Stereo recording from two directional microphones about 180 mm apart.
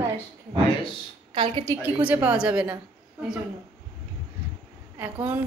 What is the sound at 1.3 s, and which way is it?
Speech, 25° right (ahead or behind).